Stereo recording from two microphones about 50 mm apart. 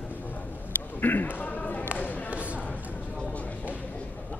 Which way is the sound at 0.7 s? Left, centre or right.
Left.